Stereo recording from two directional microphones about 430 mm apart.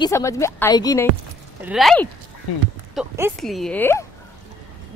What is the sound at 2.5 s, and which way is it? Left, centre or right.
Speech, left.